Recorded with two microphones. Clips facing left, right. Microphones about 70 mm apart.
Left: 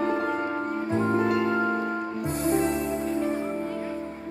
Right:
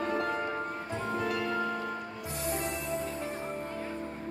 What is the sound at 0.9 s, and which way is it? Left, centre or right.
Music, left.